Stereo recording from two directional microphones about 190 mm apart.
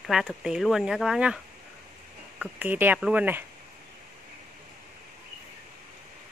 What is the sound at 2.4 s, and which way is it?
Speech, 10° right (ahead or behind).